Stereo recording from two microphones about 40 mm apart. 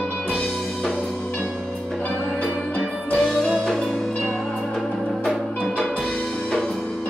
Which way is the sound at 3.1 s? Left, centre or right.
Centre.